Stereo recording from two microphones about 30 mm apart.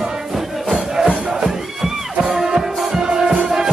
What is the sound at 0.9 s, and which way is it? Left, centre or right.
Music, right.